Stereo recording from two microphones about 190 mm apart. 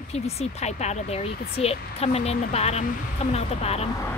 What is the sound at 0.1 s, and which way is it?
Speech, 35° left (ahead or behind).